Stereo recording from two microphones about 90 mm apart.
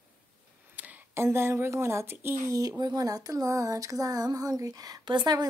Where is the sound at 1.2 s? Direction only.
30° right (ahead or behind).